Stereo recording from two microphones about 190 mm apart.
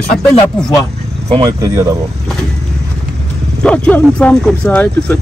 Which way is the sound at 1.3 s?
20° right (ahead or behind).